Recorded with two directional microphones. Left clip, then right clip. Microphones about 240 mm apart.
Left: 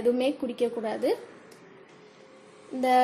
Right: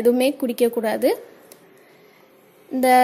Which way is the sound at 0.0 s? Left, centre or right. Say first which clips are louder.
Right 7 dB; right.